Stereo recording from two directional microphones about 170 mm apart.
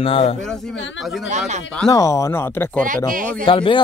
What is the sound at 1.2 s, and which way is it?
Speech, 45° right (ahead or behind).